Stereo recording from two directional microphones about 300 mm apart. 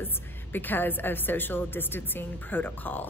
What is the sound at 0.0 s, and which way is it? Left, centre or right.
A woman's voice, centre.